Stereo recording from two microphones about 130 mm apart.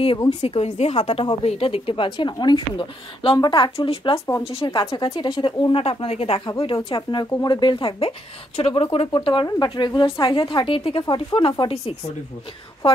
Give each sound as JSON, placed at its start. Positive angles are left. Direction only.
{"t": 0.3, "sound": "a woman's voice", "side_deg": 50}
{"t": 6.9, "sound": "a woman's voice", "side_deg": 35}